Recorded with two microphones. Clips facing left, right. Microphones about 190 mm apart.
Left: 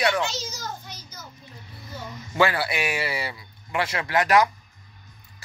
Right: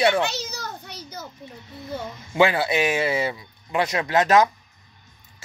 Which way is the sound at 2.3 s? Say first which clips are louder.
Right 4 dB; 20° right (ahead or behind).